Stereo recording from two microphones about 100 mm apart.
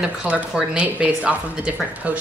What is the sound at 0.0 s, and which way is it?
A woman's voice, 10° right (ahead or behind).